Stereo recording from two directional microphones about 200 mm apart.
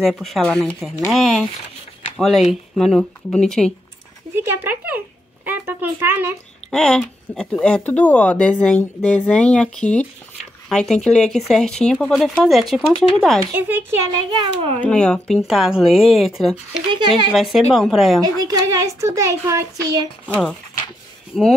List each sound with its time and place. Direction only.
0.0 s speech: centre (ahead or behind)
4.4 s a sound: 10° right (ahead or behind)
6.7 s speech: 5° left (ahead or behind)
13.5 s speech: 10° right (ahead or behind)
14.4 s a child's voice: 25° right (ahead or behind)
14.8 s speech: 5° left (ahead or behind)
16.9 s a child's voice: 25° right (ahead or behind)
17.3 s speech: centre (ahead or behind)
18.4 s speech: 20° right (ahead or behind)
21.3 s speech: centre (ahead or behind)